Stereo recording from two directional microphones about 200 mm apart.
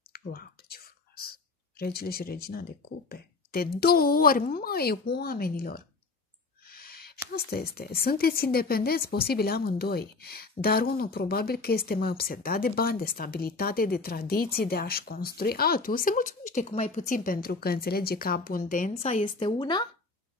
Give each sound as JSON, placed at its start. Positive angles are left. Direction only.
{"t": 0.1, "sound": "speech", "side_deg": 45}
{"t": 6.7, "sound": "owl", "side_deg": 50}
{"t": 7.3, "sound": "speech", "side_deg": 50}